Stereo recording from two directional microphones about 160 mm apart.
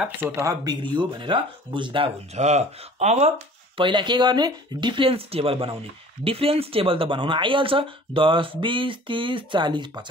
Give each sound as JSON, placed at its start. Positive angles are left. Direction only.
{"t": 0.0, "sound": "speech", "side_deg": -15}
{"t": 0.9, "sound": "speech", "side_deg": -30}
{"t": 2.3, "sound": "speech", "side_deg": -45}
{"t": 3.8, "sound": "speech", "side_deg": -30}